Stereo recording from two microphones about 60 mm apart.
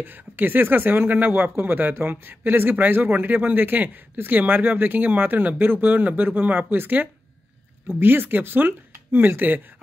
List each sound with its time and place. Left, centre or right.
0.0 s speech: right